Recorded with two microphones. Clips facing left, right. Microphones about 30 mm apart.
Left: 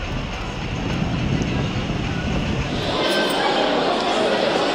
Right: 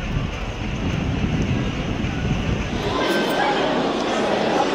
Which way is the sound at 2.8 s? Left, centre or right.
Left.